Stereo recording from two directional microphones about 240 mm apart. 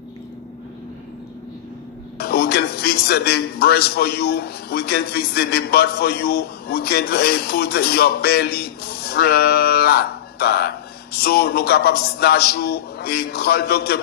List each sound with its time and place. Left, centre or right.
2.1 s a man's voice: left